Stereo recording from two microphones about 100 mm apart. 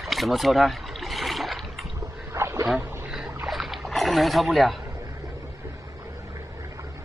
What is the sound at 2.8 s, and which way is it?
Boat, 25° right (ahead or behind).